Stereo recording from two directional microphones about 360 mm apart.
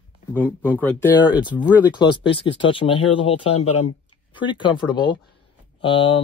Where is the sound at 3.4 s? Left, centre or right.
Left.